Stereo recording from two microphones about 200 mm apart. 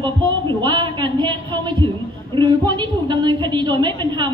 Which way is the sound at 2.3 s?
25° right (ahead or behind).